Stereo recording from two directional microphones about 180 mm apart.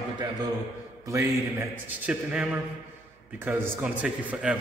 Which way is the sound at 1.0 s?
15° right (ahead or behind).